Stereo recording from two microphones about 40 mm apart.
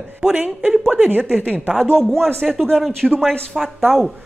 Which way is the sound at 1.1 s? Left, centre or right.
Right.